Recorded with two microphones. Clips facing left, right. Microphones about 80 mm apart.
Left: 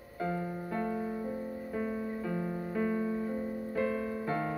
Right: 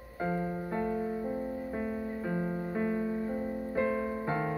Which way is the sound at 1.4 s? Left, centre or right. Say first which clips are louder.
Right 1 dB; right.